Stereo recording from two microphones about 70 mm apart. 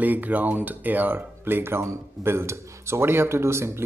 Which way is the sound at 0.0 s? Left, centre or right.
Right.